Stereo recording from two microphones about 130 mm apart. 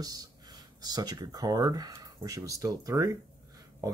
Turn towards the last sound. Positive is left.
turn(degrees=-25)  # may be behind; listen again after turning